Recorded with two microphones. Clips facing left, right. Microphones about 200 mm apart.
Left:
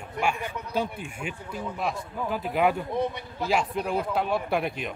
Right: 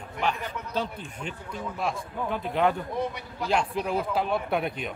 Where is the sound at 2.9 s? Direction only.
25° left (ahead or behind).